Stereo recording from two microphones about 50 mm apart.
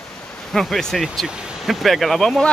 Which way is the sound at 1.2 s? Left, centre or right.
Centre.